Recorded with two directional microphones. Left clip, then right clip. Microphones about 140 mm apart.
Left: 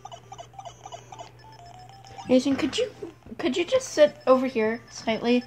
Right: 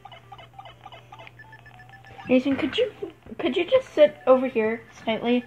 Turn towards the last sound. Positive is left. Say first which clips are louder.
# even
turn(degrees=5)  # may be behind; listen again after turning